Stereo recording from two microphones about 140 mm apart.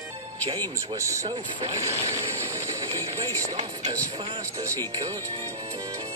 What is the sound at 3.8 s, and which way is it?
Speech, 30° right (ahead or behind).